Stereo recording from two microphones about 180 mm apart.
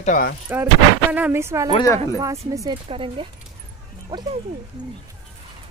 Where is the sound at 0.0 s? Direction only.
45° left (ahead or behind).